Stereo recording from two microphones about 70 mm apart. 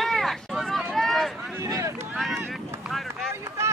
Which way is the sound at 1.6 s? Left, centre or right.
Right.